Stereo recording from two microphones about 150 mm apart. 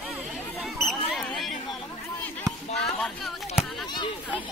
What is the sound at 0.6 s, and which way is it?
Mouse, centre (ahead or behind).